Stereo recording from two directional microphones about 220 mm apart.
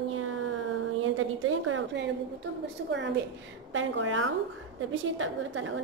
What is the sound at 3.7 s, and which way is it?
A woman's voice, 60° right (ahead or behind).